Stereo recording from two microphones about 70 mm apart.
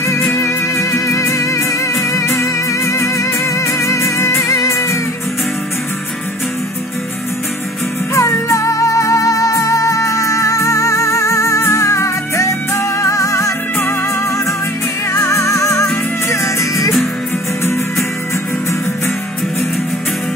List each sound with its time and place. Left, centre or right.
0.4 s music: left
8.1 s music: left
15.1 s music: left